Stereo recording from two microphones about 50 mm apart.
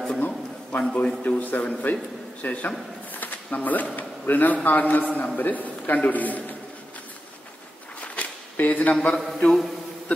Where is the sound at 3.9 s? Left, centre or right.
Left.